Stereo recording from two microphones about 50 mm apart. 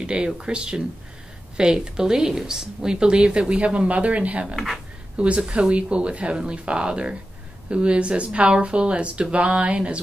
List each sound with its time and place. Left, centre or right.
0.0 s a woman's voice: centre